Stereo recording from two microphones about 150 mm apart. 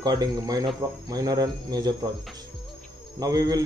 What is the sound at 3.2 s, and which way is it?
Speech, 25° right (ahead or behind).